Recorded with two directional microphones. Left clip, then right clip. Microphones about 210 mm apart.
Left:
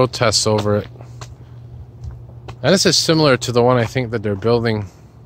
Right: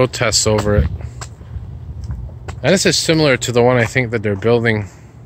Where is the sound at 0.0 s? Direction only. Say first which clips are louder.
Even; 15° left (ahead or behind).